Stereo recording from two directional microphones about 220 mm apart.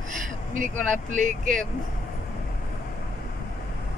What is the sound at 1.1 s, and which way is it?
Speech, 35° right (ahead or behind).